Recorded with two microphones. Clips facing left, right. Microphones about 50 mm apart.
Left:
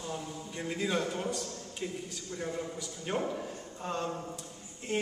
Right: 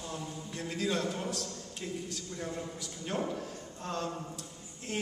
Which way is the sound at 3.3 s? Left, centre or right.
Centre.